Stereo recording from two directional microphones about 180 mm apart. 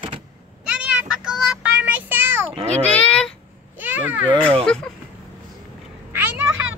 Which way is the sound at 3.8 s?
10° right (ahead or behind).